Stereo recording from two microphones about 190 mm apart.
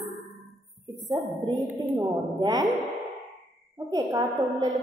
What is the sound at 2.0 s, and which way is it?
Speech, 20° right (ahead or behind).